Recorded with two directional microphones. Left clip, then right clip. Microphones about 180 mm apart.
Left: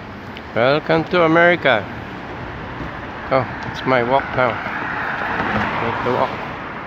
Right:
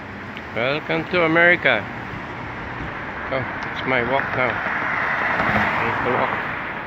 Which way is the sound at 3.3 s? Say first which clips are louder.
Left 8 dB; 40° left (ahead or behind).